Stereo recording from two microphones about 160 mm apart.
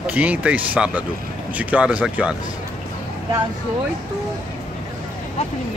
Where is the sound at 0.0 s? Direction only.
10° right (ahead or behind).